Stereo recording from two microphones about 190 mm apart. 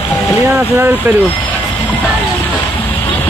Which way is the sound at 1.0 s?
10° right (ahead or behind).